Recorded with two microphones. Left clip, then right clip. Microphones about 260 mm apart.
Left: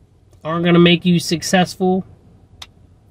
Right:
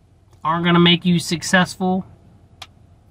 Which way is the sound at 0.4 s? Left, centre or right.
Centre.